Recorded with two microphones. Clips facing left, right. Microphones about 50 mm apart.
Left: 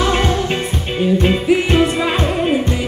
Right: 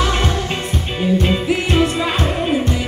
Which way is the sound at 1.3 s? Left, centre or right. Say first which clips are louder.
Left 3 dB; centre.